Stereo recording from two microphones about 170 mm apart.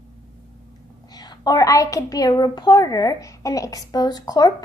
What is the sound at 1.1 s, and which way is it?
A child's voice, 25° left (ahead or behind).